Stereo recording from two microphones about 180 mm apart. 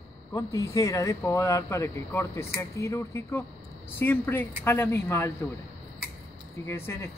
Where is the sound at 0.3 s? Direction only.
20° left (ahead or behind).